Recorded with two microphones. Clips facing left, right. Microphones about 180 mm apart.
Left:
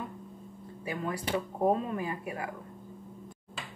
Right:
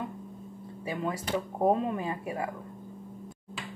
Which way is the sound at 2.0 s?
25° right (ahead or behind).